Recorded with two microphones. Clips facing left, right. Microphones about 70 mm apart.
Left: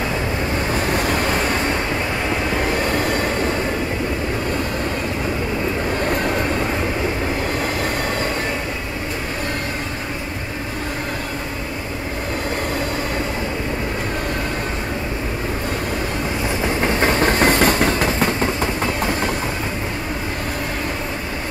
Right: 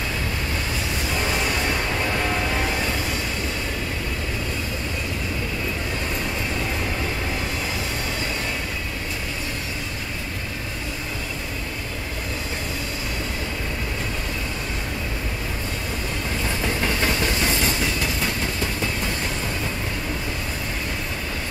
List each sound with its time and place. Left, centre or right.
0.7 s vehicle: left
2.9 s vehicle: left
6.0 s vehicle: left
16.8 s train: left